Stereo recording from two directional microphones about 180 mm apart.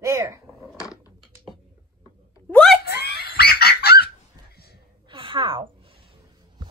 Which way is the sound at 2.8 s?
60° left (ahead or behind).